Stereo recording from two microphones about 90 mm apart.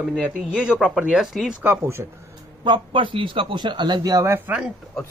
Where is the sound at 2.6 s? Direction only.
65° right (ahead or behind); by 4.4 s 40° right (ahead or behind).